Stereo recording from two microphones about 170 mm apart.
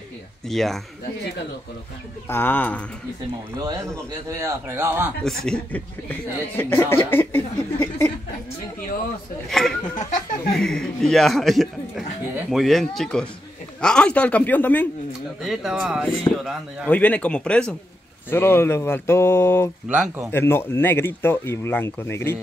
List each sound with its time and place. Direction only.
0.5 s speech: centre (ahead or behind)
2.2 s speech: 10° left (ahead or behind)
3.6 s a man's voice: 15° right (ahead or behind)
5.2 s speech: 5° left (ahead or behind)
9.5 s speech: centre (ahead or behind)
15.4 s speech: centre (ahead or behind); by 22.4 s 15° left (ahead or behind)